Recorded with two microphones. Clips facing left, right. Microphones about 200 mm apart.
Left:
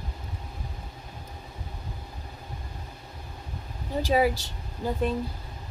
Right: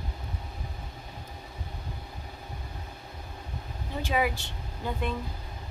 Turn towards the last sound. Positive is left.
turn(degrees=35)  # may be behind; listen again after turning